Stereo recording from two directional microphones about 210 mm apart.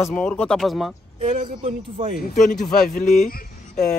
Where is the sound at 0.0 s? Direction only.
5° left (ahead or behind).